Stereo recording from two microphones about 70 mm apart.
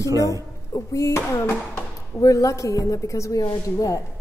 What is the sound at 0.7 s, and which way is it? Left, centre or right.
A woman's voice, left.